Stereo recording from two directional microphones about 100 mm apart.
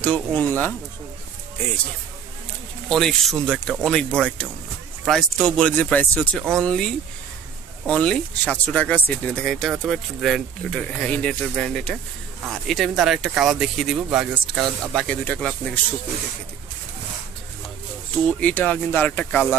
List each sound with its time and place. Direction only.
0.0 s speech: 15° left (ahead or behind)
2.9 s speech: 5° left (ahead or behind)
15.0 s speech: 10° left (ahead or behind)
18.2 s speech: 15° left (ahead or behind)